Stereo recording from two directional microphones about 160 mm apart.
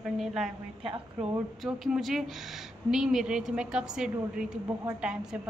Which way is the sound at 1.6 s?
Centre (ahead or behind).